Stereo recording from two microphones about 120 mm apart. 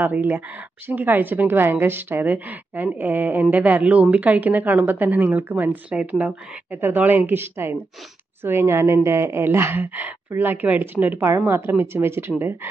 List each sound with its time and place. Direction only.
0.0 s a woman's voice: 15° right (ahead or behind)